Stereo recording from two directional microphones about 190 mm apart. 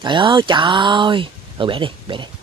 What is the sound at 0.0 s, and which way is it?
Speech, 25° right (ahead or behind).